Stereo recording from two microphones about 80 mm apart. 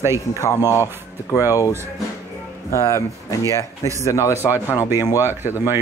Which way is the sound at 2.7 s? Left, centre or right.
Left.